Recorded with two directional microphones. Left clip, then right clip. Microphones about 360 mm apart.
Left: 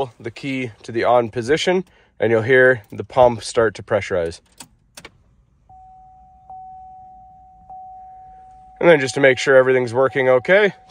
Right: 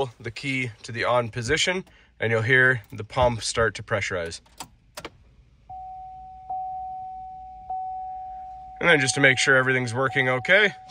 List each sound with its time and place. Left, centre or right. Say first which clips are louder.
0.0 s speech: left 3 dB; centre
8.7 s speech: left 6 dB; centre